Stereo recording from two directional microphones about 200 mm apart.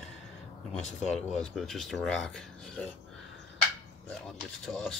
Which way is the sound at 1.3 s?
Centre (ahead or behind).